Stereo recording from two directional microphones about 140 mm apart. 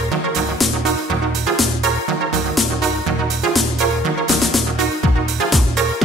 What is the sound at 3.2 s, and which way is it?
Music, centre (ahead or behind).